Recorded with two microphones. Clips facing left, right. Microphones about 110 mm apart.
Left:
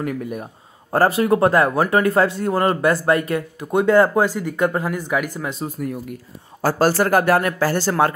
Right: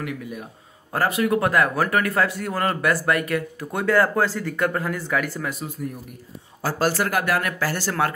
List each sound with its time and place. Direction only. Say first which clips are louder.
0.0 s speech: left 6 dB; 45° left (ahead or behind)
0.9 s speech: left 5 dB; 35° left (ahead or behind)
6.6 s speech: left 5 dB; 40° left (ahead or behind)